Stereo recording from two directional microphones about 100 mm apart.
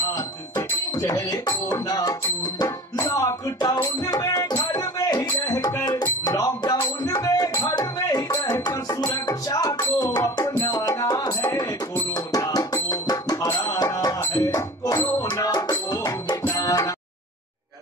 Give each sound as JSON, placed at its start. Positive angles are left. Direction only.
{"t": 0.6, "sound": "music", "side_deg": 35}